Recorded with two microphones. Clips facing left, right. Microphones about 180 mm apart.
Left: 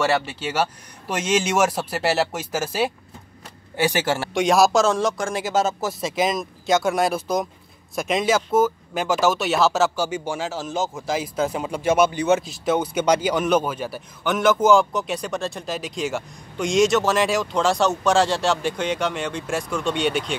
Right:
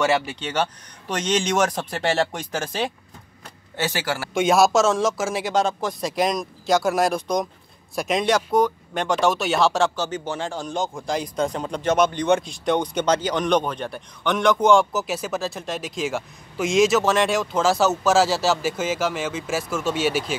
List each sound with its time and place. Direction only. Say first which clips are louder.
0.0 s speech: even; centre (ahead or behind)
4.0 s speech: left 4 dB; 25° left (ahead or behind)
4.3 s speech: right 1 dB; centre (ahead or behind)